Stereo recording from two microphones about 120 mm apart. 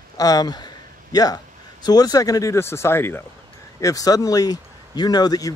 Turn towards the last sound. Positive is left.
turn(degrees=35)  # may be behind; listen again after turning